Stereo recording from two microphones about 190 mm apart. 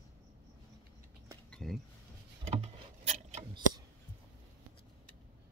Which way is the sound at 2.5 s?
35° right (ahead or behind).